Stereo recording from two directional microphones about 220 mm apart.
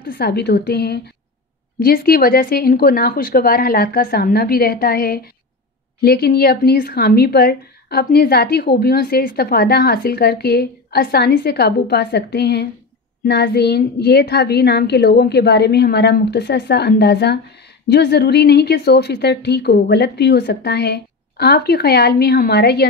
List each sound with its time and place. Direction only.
0.0 s speech: 45° left (ahead or behind)